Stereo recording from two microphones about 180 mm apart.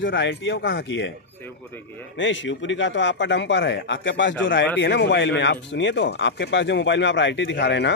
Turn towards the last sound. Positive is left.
turn(degrees=75)  # may be behind; listen again after turning